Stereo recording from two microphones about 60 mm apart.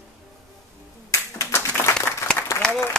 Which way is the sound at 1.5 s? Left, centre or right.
Left.